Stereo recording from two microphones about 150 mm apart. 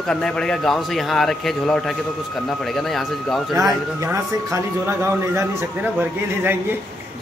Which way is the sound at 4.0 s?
20° right (ahead or behind).